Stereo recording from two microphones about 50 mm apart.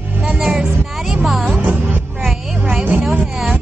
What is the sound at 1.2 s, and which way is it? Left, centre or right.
Music, centre.